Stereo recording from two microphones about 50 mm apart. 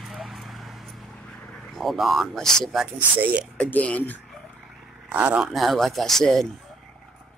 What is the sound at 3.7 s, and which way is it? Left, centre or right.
Speech, left.